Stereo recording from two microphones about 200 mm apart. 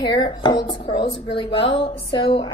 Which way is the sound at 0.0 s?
20° left (ahead or behind).